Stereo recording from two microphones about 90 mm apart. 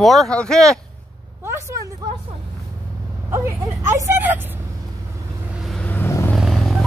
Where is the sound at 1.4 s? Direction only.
30° right (ahead or behind).